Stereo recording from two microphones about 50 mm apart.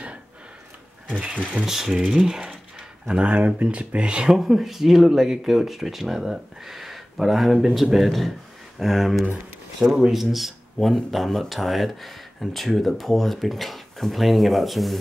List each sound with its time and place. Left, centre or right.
1.7 s speech: centre
3.1 s speech: right
4.3 s speech: centre
9.8 s speech: centre
10.1 s speech: centre